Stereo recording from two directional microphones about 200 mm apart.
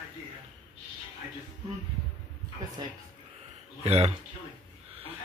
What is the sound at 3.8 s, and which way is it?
Speech, 30° right (ahead or behind).